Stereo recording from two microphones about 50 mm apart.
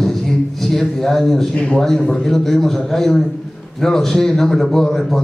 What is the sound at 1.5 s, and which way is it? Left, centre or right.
Speech, left.